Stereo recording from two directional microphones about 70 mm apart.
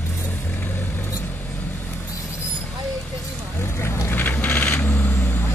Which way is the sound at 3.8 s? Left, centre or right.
Left.